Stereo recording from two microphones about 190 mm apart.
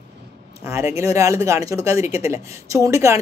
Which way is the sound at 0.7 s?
15° right (ahead or behind).